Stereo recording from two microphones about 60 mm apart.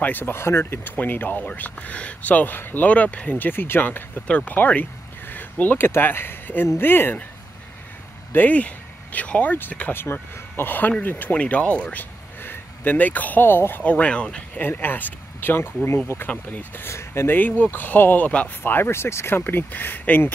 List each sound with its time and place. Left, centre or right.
0.0 s speech: left
4.3 s speech: left
4.6 s a sound: left
5.9 s speech: left
8.3 s speech: left
10.1 s speech: left
13.8 s speech: left
14.6 s speech: left
16.3 s speech: centre
16.9 s speech: left
17.3 s speech: left
18.6 s speech: left